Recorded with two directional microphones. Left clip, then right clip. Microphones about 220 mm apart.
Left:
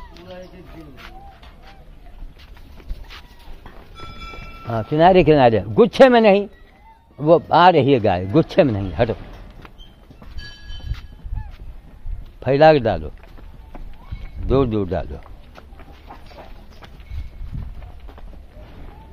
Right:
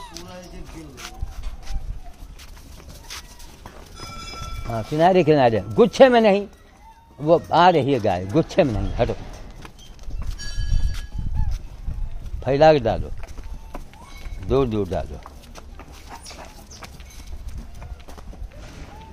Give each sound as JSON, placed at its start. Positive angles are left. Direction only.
{"t": 4.6, "sound": "speech", "side_deg": 35}
{"t": 12.4, "sound": "speech", "side_deg": 30}
{"t": 14.5, "sound": "speech", "side_deg": 30}